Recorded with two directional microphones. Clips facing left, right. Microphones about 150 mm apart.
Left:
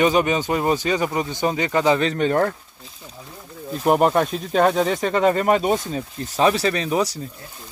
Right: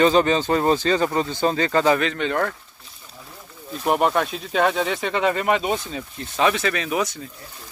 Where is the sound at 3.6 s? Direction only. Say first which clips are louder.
Left 3 dB; 40° left (ahead or behind).